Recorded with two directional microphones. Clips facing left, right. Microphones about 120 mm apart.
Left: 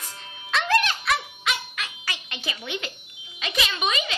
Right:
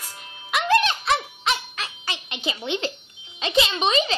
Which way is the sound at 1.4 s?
30° right (ahead or behind).